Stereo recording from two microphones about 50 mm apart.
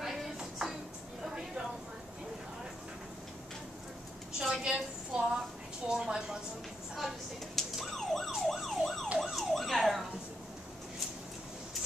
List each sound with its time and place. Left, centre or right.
0.0 s music: centre
4.4 s a sound: centre
7.5 s emergency vehicle: centre